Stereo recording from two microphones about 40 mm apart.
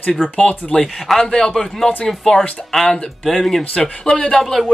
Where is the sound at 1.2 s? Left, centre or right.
Centre.